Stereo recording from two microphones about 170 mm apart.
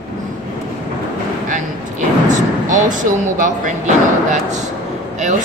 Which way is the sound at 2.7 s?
50° right (ahead or behind).